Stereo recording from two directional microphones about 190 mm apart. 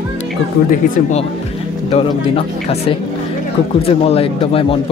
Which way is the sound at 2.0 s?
30° left (ahead or behind).